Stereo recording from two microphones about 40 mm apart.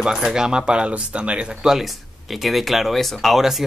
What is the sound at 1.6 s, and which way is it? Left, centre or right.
Speech, centre.